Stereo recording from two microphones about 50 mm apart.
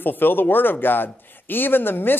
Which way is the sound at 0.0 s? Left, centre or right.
Left.